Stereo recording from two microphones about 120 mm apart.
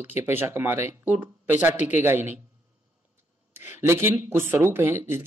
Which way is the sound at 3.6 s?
20° right (ahead or behind).